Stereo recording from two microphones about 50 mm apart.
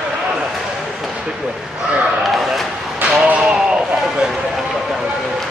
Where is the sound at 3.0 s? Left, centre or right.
Right.